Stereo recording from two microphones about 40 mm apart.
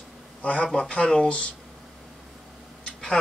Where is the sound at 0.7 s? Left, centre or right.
Centre.